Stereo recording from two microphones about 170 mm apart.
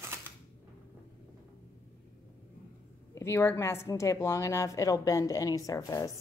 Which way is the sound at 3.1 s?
15° left (ahead or behind).